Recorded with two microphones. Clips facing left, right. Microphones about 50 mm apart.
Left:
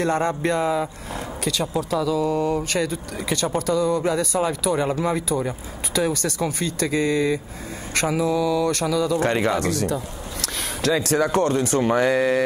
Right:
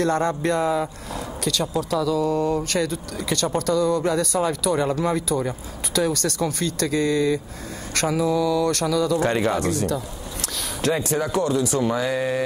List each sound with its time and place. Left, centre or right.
0.0 s speech: centre
9.2 s speech: left
10.4 s a sound: left
11.3 s speech: left